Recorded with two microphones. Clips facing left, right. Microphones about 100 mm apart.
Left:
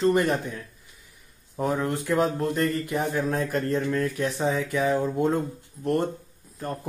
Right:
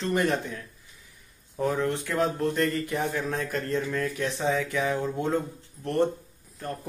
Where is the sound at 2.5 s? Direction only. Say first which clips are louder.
Left 1 dB; 5° left (ahead or behind).